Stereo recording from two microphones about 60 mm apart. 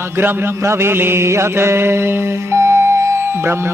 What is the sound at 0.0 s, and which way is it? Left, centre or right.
Mantra, right.